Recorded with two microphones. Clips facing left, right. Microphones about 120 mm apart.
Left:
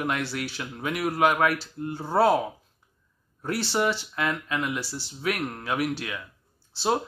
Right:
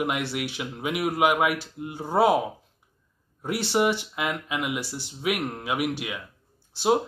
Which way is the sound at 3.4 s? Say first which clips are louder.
Right 2 dB; 20° right (ahead or behind).